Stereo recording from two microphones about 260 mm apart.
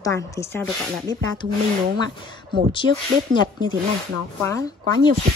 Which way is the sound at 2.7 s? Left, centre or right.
Centre.